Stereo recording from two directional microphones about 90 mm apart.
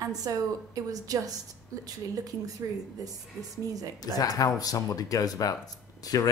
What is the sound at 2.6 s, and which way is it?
Speech, 40° right (ahead or behind).